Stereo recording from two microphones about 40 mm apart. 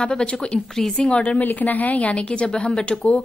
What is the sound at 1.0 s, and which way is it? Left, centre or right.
Speech, left.